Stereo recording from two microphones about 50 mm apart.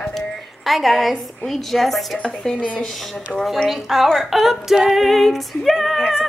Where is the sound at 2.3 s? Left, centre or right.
Centre.